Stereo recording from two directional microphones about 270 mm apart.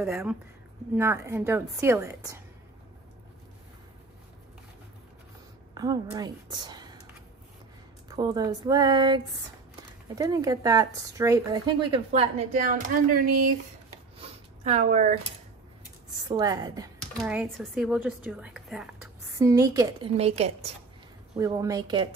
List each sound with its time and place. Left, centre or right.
0.0 s a woman's voice: centre
5.8 s a woman's voice: centre
8.2 s speech: centre; by 13.3 s right
14.1 s a sound: right
16.3 s speech: centre
17.2 s a woman's voice: centre
19.3 s speech: centre
21.4 s speech: centre